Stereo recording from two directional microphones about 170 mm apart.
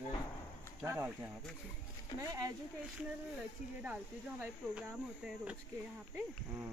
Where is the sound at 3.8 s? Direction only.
10° right (ahead or behind).